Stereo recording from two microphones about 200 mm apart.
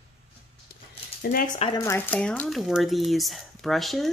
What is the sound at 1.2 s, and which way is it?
Speech, 50° left (ahead or behind).